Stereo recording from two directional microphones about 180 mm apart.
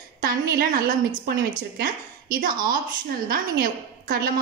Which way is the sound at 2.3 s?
50° right (ahead or behind).